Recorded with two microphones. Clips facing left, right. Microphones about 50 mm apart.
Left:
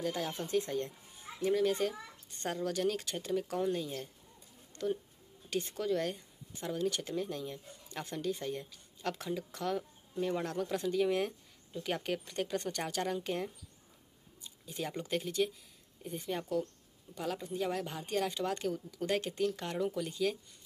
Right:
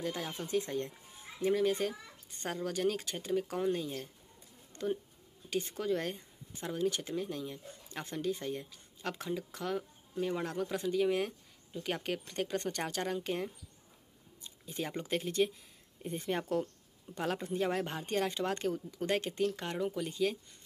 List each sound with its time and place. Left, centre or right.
0.0 s speech: centre
1.5 s speech: centre
6.7 s speech: centre
14.7 s speech: right
17.1 s speech: right
17.6 s speech: right
18.7 s speech: right